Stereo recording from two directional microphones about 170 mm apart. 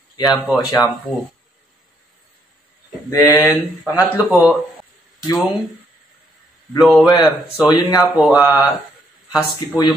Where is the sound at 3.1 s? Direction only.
20° left (ahead or behind).